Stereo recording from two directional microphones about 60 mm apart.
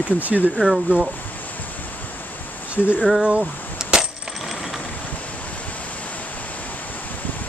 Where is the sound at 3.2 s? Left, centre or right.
Centre.